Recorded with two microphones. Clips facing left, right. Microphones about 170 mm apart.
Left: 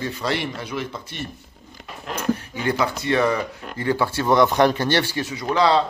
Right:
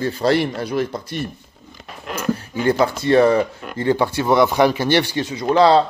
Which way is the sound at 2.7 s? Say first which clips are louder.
Right 5 dB; 35° right (ahead or behind).